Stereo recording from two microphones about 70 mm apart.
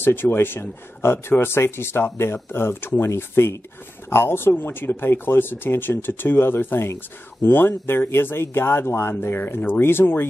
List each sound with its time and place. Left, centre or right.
0.0 s speech: left